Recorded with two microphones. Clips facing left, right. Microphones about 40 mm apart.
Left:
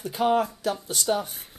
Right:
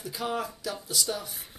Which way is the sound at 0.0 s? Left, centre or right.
Left.